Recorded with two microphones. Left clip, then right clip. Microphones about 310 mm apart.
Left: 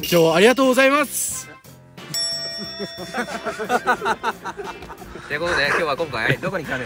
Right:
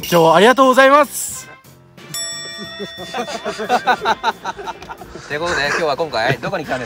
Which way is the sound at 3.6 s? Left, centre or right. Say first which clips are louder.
Right 4 dB; right.